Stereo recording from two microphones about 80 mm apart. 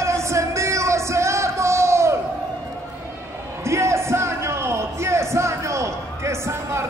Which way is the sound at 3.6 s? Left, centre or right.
Right.